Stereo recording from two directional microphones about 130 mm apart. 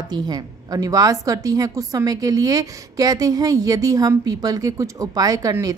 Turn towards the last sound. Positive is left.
turn(degrees=-25)  # may be behind; listen again after turning